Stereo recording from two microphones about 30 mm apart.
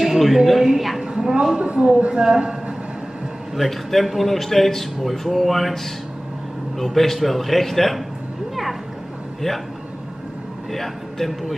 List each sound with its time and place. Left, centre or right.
0.0 s a sound: centre
0.6 s a woman's voice: centre
1.0 s a sound: right
1.6 s speech: right
2.1 s a man's voice: right
3.5 s a man's voice: centre
6.8 s a man's voice: centre
10.7 s a man's voice: centre